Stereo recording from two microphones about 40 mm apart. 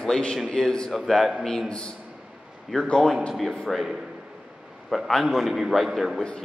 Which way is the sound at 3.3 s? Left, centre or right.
Centre.